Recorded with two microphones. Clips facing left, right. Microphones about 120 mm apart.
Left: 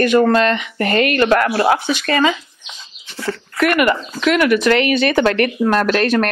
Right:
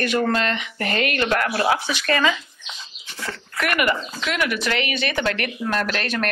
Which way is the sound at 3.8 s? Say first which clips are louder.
Left 7 dB; 55° left (ahead or behind).